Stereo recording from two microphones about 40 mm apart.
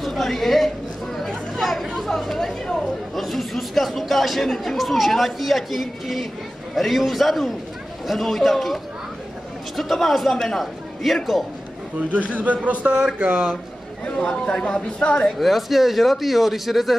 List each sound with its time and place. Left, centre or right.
0.0 s a woman's voice: centre
1.1 s chatter: centre
2.0 s a woman's voice: centre
10.6 s a man's voice: centre
12.1 s a man's voice: right
13.2 s speech: right
14.0 s a woman's voice: left
15.3 s speech: centre